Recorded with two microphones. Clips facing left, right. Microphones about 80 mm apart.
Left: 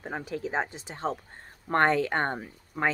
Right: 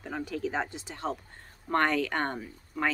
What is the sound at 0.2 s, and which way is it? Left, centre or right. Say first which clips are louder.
Speech: even; left.